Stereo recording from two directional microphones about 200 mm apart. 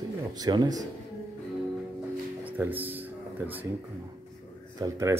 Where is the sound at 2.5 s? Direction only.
10° right (ahead or behind).